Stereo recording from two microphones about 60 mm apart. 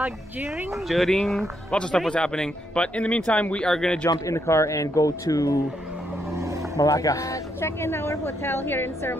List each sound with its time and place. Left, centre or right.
0.7 s speech: centre
1.7 s a man's voice: centre
3.7 s a man's voice: centre
4.5 s speech: left
6.3 s vehicle: right
6.8 s speech: left